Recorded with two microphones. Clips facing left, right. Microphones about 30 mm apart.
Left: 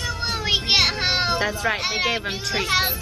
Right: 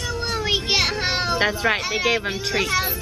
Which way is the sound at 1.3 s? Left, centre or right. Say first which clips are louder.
Right 3 dB; right.